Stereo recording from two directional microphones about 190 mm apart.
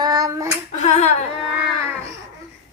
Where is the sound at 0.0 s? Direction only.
20° right (ahead or behind).